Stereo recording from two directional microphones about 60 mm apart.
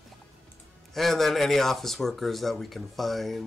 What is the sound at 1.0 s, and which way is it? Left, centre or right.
Speech, centre.